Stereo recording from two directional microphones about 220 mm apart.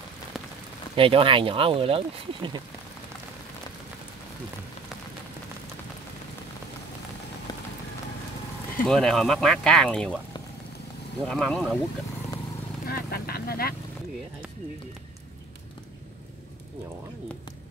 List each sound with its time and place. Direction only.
0.9 s speech: 25° right (ahead or behind)
8.8 s speech: centre (ahead or behind)
11.2 s speech: 5° left (ahead or behind)
12.8 s vehicle: 45° left (ahead or behind)